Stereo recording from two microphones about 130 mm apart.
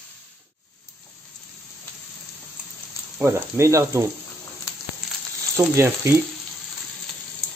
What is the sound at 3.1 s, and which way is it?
Speech, 20° right (ahead or behind).